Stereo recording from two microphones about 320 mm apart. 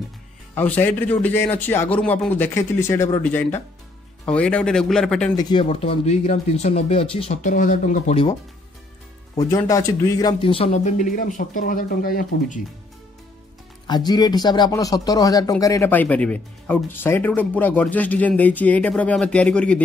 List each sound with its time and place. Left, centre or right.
0.6 s a man's voice: centre
5.3 s speech: centre
9.4 s speech: centre; by 12.5 s left
13.8 s a man's voice: centre